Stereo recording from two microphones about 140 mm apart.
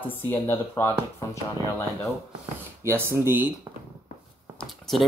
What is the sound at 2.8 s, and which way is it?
Speech, 15° right (ahead or behind).